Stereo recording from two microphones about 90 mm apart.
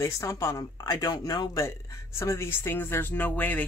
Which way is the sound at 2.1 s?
30° left (ahead or behind).